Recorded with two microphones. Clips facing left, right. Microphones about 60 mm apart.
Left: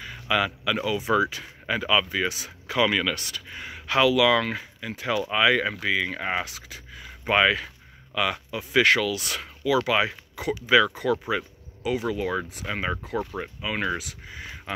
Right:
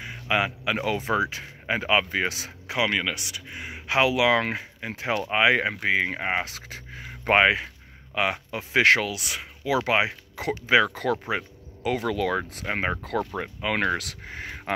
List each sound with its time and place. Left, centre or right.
0.0 s speech: right
0.8 s speech: right
2.8 s speech: centre
6.5 s speech: right
9.1 s speech: centre
9.6 s speech: right
11.8 s speech: right
12.6 s speech: right